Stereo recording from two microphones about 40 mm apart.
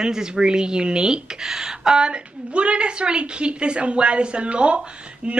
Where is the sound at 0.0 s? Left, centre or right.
Centre.